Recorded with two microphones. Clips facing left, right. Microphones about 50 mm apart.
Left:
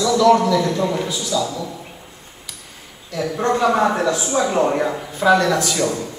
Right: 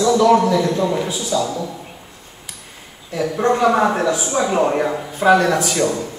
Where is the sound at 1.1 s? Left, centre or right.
Right.